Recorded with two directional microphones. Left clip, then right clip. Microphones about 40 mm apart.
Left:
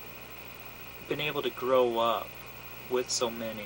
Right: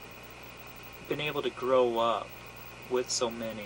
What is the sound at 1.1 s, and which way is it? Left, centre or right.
Speech, centre.